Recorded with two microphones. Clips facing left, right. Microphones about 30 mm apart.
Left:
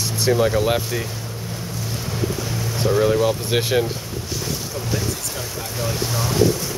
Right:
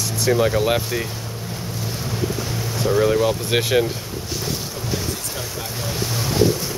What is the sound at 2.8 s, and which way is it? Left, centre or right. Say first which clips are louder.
Speech: even; centre.